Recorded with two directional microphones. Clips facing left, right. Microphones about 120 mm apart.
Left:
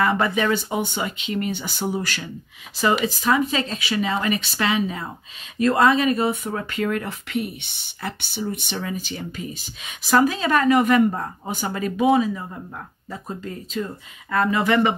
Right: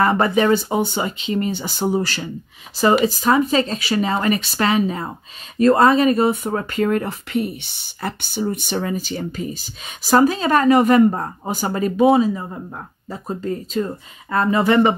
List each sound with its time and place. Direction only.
0.0 s speech: 40° right (ahead or behind)